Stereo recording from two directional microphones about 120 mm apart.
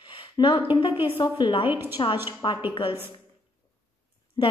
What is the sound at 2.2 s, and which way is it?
Speech, 45° left (ahead or behind).